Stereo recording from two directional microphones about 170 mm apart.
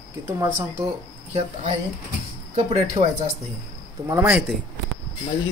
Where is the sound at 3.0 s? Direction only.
35° right (ahead or behind).